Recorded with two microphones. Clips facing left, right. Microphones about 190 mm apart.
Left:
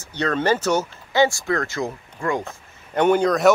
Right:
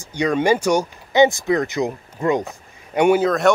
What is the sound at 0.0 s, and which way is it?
Speech, 10° right (ahead or behind).